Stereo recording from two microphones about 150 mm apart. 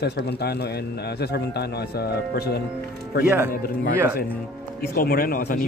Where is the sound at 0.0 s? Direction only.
90° left.